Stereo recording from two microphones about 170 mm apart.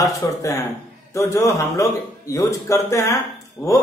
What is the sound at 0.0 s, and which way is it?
A man's voice, 20° left (ahead or behind).